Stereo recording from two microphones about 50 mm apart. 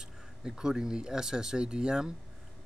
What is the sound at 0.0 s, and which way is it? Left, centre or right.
Speech, centre.